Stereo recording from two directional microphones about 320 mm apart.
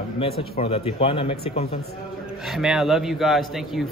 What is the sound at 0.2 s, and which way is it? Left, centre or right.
Speech, centre.